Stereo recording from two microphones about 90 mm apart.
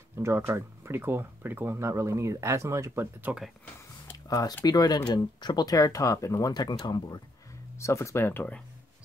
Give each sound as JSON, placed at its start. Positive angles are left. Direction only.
{"t": 0.2, "sound": "speech", "side_deg": -30}
{"t": 4.3, "sound": "speech", "side_deg": 40}
{"t": 7.8, "sound": "speech", "side_deg": 35}